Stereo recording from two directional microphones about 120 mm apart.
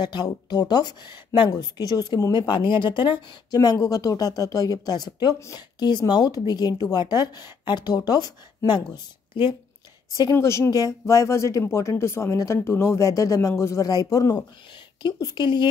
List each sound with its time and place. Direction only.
0.0 s speech: 35° left (ahead or behind)
10.3 s speech: 20° left (ahead or behind); by 15.6 s 40° left (ahead or behind)